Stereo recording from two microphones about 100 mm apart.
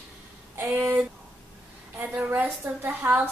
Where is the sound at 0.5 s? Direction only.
25° right (ahead or behind).